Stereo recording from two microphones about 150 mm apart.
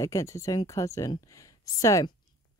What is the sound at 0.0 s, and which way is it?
Speech, 20° left (ahead or behind).